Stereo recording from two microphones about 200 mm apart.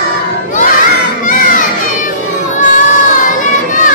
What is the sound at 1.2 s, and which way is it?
Children playing, 40° left (ahead or behind).